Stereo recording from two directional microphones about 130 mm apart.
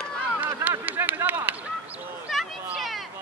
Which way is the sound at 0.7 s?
15° right (ahead or behind).